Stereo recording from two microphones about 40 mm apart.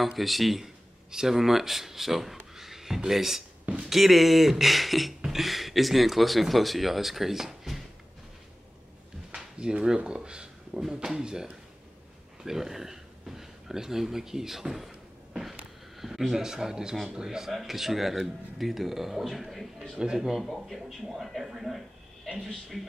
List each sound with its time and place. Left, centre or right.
0.0 s speech: centre
2.5 s a sound: centre
3.8 s speech: centre
9.3 s a sound: centre
10.8 s speech: centre
12.4 s speech: centre
16.0 s speech: centre
17.5 s a man's voice: centre